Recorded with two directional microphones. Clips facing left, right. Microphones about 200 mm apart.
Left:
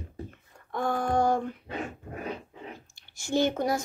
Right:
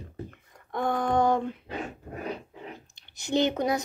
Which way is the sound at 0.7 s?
20° right (ahead or behind).